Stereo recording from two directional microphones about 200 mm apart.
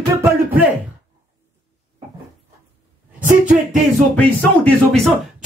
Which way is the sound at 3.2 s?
40° right (ahead or behind).